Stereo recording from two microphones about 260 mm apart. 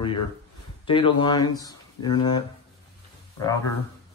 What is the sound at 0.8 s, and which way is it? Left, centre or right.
Speech, centre.